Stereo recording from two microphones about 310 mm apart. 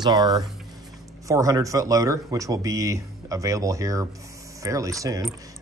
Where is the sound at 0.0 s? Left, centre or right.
Centre.